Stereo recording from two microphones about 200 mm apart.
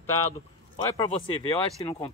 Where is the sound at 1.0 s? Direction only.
25° left (ahead or behind).